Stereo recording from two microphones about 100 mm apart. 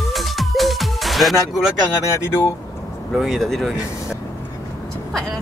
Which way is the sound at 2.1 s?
25° left (ahead or behind).